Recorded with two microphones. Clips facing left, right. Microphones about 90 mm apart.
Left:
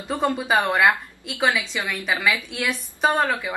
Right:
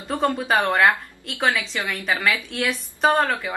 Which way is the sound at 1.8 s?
20° left (ahead or behind).